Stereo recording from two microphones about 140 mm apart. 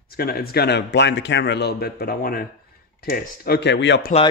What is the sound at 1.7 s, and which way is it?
Speech, 90° left.